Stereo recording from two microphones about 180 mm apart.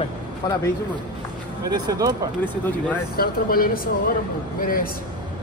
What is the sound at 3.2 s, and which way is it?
A woman's voice, 55° left (ahead or behind).